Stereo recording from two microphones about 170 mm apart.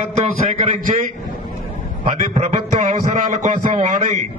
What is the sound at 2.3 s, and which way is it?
Speech, 45° right (ahead or behind).